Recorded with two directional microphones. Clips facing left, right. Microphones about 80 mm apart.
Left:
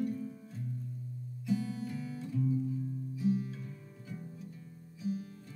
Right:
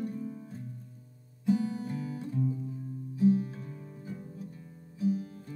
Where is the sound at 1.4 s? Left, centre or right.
Right.